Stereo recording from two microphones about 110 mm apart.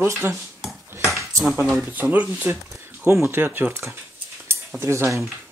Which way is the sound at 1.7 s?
25° right (ahead or behind).